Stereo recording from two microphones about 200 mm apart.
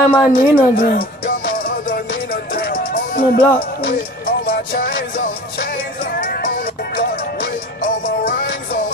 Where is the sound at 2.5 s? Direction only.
45° left (ahead or behind).